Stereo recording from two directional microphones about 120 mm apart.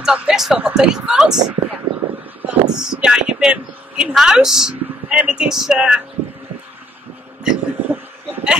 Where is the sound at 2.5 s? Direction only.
10° right (ahead or behind).